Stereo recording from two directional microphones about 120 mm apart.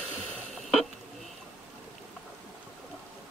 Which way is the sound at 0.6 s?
Centre (ahead or behind).